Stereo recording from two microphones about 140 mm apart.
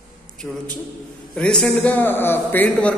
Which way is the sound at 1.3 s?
5° left (ahead or behind).